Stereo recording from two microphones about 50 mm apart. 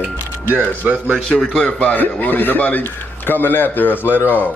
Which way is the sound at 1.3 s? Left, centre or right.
Centre.